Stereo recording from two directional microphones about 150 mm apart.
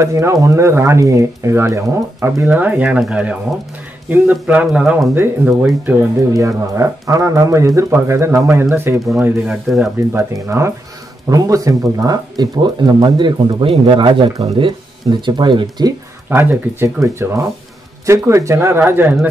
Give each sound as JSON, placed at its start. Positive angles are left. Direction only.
{"t": 0.0, "sound": "speech", "side_deg": -20}
{"t": 9.2, "sound": "speech", "side_deg": -5}
{"t": 10.1, "sound": "speech", "side_deg": -20}
{"t": 16.3, "sound": "speech", "side_deg": -15}